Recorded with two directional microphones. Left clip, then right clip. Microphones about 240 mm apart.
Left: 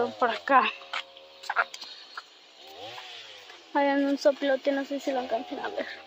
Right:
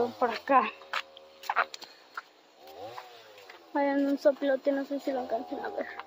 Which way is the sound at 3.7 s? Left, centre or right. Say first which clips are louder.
Left 3 dB; centre.